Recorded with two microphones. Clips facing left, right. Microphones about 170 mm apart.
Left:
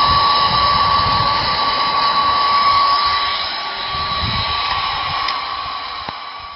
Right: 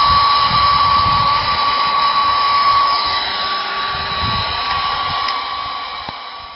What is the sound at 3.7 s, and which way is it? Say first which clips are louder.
Hair dryer: right 1 dB; 65° right (ahead or behind).